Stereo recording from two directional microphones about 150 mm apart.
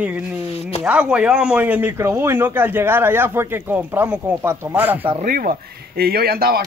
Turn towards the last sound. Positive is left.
turn(degrees=-90)